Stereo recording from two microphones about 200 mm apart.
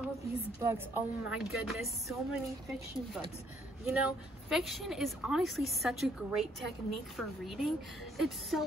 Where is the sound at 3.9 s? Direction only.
5° right (ahead or behind).